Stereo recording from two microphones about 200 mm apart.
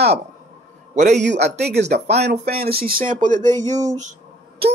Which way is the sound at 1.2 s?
60° right (ahead or behind).